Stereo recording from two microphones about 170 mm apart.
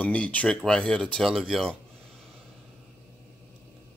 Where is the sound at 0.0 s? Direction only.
10° left (ahead or behind).